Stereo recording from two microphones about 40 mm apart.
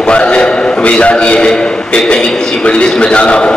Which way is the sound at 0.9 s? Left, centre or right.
Left.